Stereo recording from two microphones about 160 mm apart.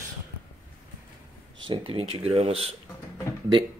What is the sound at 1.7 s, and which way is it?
Speech, 35° right (ahead or behind).